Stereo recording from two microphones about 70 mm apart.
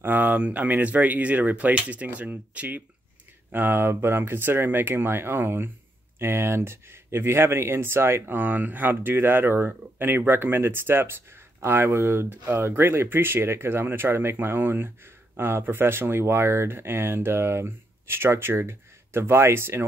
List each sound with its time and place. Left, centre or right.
0.0 s speech: right